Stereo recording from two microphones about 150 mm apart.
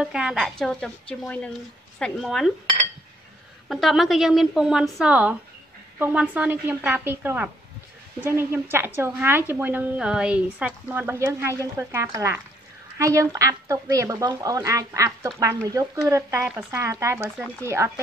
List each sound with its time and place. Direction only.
0.0 s a woman's voice: 5° right (ahead or behind)
3.6 s a woman's voice: centre (ahead or behind); by 17.9 s 20° right (ahead or behind)